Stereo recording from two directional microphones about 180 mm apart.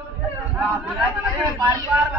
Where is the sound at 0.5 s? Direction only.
5° right (ahead or behind).